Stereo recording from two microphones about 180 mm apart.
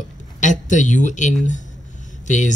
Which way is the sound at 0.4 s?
45° left (ahead or behind).